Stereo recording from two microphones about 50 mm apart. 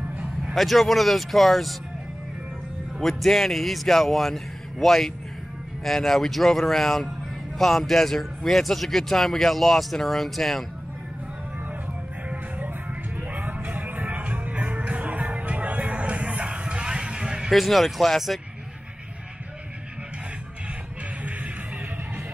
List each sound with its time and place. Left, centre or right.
0.6 s a man's voice: centre
3.0 s a man's voice: centre
12.3 s music: right; by 17.5 s centre
17.5 s a man's voice: centre